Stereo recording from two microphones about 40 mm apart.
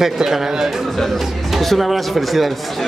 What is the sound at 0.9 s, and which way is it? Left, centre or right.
Speech, centre.